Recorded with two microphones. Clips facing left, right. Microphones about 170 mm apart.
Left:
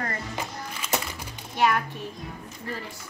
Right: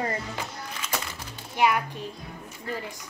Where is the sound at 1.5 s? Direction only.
15° right (ahead or behind).